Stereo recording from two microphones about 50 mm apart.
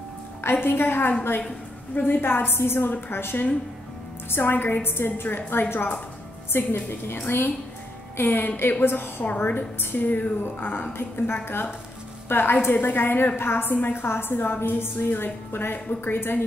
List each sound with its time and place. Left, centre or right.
0.4 s a woman's voice: left
6.5 s a woman's voice: left
9.2 s a woman's voice: left